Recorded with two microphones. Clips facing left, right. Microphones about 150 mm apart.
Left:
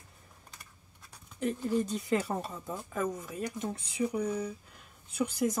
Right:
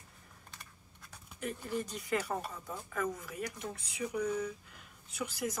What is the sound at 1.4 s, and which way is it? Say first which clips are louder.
Speech: left 7 dB; 25° left (ahead or behind).